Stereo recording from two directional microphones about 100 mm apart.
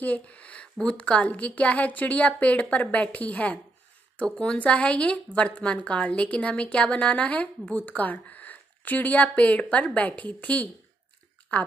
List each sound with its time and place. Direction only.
0.0 s a woman's voice: 15° left (ahead or behind)